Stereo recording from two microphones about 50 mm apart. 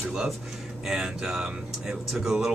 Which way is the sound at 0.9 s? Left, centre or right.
Centre.